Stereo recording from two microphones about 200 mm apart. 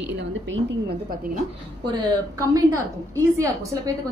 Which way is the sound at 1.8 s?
20° right (ahead or behind).